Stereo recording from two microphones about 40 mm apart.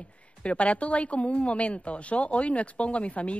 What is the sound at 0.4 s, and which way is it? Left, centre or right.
A woman's voice, left.